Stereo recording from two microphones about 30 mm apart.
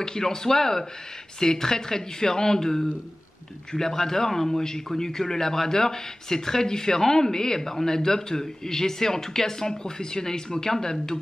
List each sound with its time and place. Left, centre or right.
0.0 s a man's voice: centre